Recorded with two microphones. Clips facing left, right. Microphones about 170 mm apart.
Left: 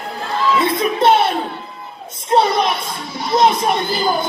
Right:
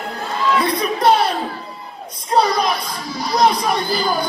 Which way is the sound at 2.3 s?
25° left (ahead or behind).